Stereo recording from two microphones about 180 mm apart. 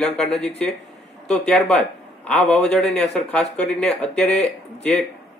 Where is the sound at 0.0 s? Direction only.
5° left (ahead or behind).